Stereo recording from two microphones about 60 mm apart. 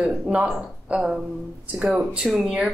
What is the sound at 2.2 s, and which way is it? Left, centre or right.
Speech, centre.